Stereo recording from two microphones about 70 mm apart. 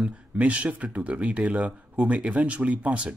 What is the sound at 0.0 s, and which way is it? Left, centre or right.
Speech, centre.